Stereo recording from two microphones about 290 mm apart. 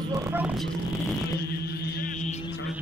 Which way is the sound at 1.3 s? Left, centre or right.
Left.